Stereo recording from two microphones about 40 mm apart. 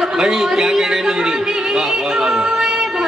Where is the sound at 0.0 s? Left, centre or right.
Centre.